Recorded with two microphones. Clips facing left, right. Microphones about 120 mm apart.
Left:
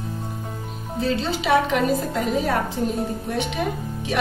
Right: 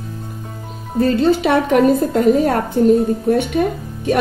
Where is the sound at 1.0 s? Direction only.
50° right (ahead or behind).